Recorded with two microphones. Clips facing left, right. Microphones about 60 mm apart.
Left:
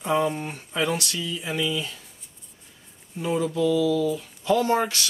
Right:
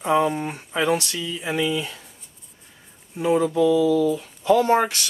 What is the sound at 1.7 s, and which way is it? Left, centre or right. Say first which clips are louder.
Speech: right 3 dB; centre.